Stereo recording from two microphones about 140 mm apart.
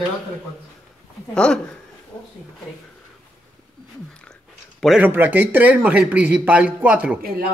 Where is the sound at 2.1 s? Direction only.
35° left (ahead or behind).